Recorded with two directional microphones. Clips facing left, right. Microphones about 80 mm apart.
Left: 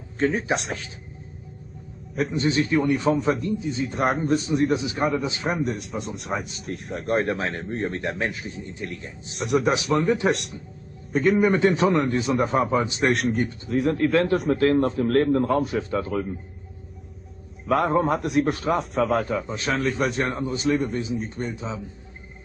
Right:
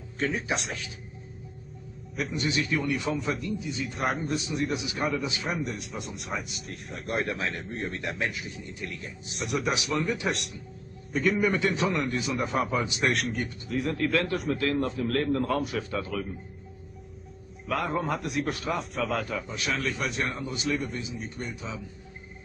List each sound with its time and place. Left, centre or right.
0.2 s a man's voice: left
2.1 s a man's voice: left
9.4 s a man's voice: left
13.9 s a man's voice: left
17.6 s a man's voice: left
19.2 s a man's voice: left